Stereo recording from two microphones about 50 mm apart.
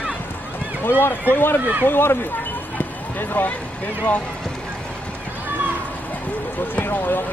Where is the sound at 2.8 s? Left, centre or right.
Left.